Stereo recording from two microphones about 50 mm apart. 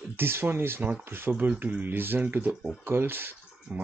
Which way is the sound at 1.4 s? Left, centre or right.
Right.